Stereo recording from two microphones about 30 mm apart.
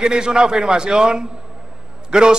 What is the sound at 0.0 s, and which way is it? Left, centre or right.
A woman's voice, right.